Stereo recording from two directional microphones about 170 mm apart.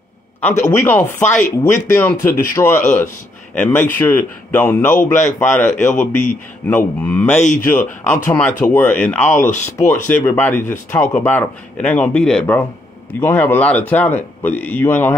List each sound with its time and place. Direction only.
0.4 s speech: 10° left (ahead or behind)